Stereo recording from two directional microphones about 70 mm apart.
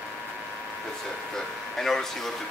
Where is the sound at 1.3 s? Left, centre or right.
Centre.